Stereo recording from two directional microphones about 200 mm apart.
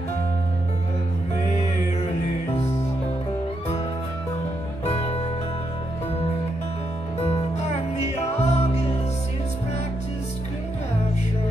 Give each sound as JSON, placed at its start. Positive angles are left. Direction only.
{"t": 1.5, "sound": "music", "side_deg": 35}
{"t": 4.8, "sound": "music", "side_deg": 30}
{"t": 7.2, "sound": "music", "side_deg": 30}